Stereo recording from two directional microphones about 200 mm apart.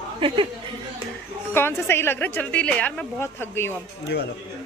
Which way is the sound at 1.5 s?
10° left (ahead or behind).